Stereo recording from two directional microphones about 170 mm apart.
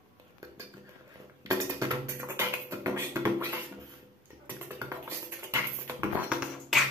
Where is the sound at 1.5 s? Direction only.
15° right (ahead or behind).